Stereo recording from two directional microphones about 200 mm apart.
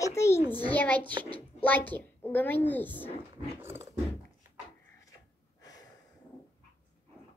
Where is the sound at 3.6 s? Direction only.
10° right (ahead or behind).